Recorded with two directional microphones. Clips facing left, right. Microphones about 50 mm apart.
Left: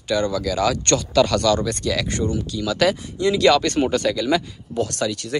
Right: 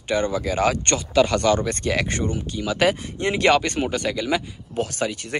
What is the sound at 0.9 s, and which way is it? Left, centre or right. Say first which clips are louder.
Speech: left 2 dB; centre.